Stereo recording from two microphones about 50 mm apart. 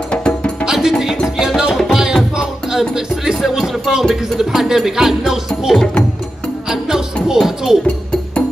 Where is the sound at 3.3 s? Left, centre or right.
Centre.